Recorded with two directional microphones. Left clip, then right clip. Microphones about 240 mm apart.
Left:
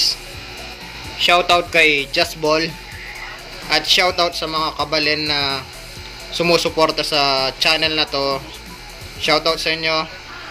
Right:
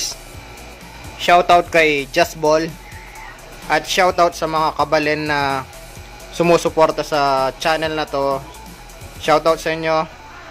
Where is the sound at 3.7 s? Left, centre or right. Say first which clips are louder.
Even; centre.